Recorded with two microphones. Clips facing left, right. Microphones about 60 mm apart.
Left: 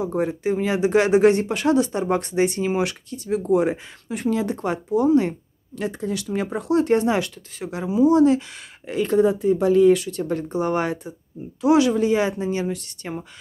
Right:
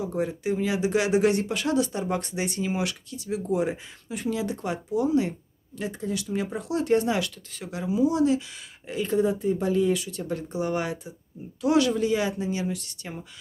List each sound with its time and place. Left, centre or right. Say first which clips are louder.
0.4 s speech: left 4 dB; left
5.8 s speech: left 4 dB; left
7.0 s speech: left 4 dB; left
8.9 s speech: left 6 dB; left
11.6 s speech: left 5 dB; left